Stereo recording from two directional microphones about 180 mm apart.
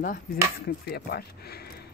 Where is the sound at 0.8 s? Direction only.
60° left (ahead or behind).